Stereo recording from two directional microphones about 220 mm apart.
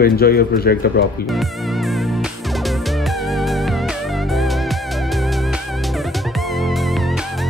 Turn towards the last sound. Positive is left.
turn(degrees=0)  # may be behind; listen again after turning